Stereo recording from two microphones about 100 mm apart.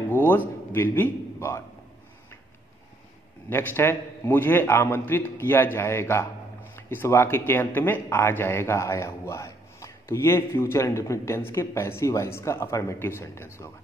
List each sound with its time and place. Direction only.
0.1 s a sound: 20° left (ahead or behind)
0.7 s speech: 20° left (ahead or behind)
3.4 s speech: 25° left (ahead or behind)